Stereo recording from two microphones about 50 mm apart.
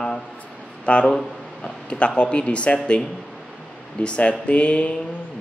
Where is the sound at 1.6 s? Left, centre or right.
Left.